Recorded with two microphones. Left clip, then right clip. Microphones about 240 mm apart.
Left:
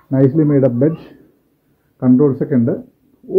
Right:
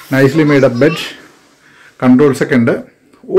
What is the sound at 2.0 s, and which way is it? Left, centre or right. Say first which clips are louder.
Speech: right 4 dB; centre.